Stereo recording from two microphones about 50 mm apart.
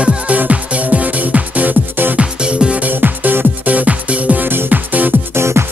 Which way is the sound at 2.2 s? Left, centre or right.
Centre.